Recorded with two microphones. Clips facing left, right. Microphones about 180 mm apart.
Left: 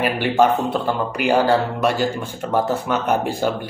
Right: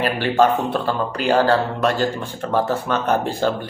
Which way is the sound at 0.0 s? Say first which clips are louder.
Even; 15° left (ahead or behind).